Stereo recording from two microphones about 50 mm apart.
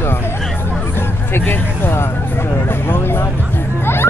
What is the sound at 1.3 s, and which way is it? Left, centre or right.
Speech, left.